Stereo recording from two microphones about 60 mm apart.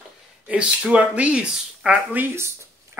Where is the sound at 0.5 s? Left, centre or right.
Right.